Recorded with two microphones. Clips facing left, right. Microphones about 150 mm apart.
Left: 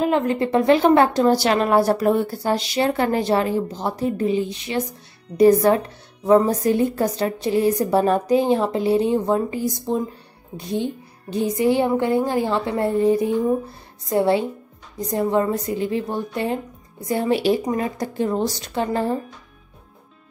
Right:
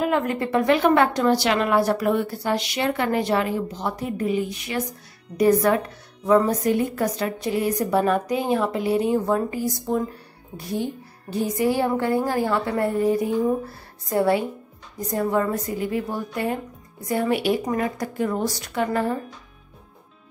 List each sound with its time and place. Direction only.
0.0 s a woman's voice: 25° left (ahead or behind)